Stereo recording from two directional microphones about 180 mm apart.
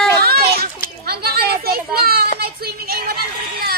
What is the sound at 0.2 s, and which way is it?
Children playing, 60° right (ahead or behind).